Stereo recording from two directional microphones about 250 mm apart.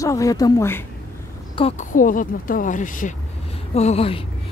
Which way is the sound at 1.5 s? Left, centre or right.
Left.